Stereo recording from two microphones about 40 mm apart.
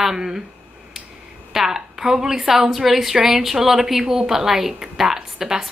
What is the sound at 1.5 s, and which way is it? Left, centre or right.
A woman's voice, centre.